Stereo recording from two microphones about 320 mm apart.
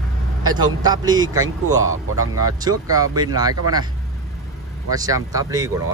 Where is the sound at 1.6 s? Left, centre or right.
Right.